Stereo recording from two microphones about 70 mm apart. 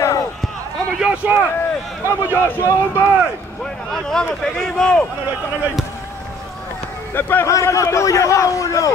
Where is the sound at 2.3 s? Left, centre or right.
Left.